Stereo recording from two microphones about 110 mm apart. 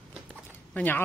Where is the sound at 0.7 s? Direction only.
15° left (ahead or behind).